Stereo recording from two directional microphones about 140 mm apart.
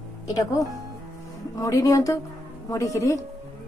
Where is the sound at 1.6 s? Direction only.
20° left (ahead or behind).